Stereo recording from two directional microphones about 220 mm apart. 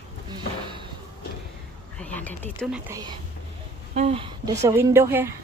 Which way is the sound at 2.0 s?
5° left (ahead or behind).